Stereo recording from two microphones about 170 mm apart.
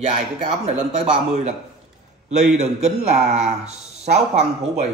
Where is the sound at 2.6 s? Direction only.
40° right (ahead or behind).